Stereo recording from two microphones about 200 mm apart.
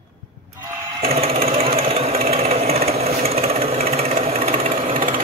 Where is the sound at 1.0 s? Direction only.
30° right (ahead or behind).